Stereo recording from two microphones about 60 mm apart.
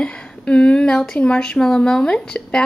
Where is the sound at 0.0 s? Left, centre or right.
Centre.